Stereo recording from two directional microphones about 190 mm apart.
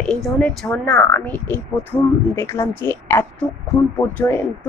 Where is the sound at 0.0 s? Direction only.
5° left (ahead or behind).